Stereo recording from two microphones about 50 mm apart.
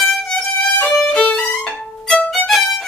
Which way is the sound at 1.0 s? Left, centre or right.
Centre.